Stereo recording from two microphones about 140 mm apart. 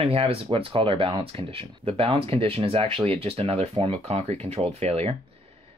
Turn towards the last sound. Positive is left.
turn(degrees=-50)  # may be behind; listen again after turning